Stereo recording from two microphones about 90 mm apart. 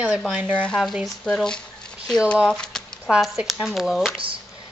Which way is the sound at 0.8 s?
Centre (ahead or behind).